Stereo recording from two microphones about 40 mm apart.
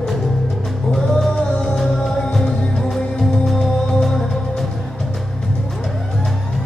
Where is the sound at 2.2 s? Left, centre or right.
Centre.